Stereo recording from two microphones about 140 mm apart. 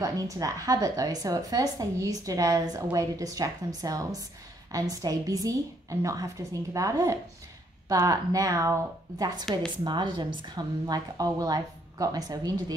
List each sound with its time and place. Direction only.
0.0 s a woman's voice: 25° right (ahead or behind)